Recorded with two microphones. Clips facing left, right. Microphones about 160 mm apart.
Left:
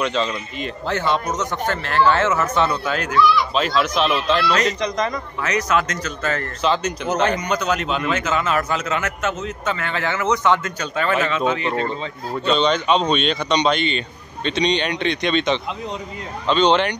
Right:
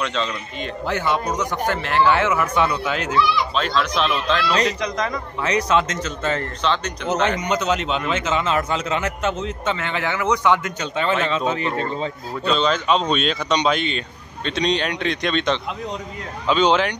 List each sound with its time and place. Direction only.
0.0 s speech: 5° left (ahead or behind)
0.8 s speech: 15° right (ahead or behind)
3.5 s speech: 5° left (ahead or behind)
5.4 s a man's voice: 30° right (ahead or behind)
6.6 s speech: 5° left (ahead or behind)
7.2 s a man's voice: 20° right (ahead or behind)
11.2 s speech: 35° right (ahead or behind)
12.4 s speech: centre (ahead or behind)